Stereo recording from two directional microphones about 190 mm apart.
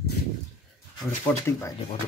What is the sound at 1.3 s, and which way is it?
Speech, 10° left (ahead or behind).